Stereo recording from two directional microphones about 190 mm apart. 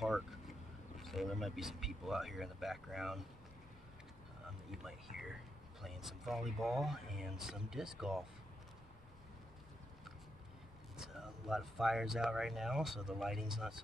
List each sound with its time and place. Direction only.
0.9 s speech: centre (ahead or behind)
4.6 s speech: centre (ahead or behind)
11.0 s speech: centre (ahead or behind)